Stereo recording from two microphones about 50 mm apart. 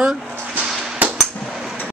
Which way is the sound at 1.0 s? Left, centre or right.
Right.